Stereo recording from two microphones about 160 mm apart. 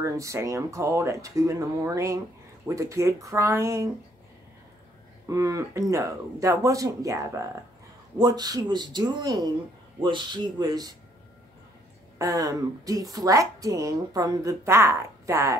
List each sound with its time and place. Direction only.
0.0 s a woman's voice: 20° right (ahead or behind)
5.3 s a woman's voice: 20° right (ahead or behind)
12.2 s a woman's voice: 20° right (ahead or behind)